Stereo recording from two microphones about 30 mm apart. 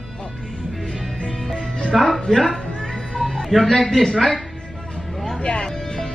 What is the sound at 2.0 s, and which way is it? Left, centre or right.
Speech, centre.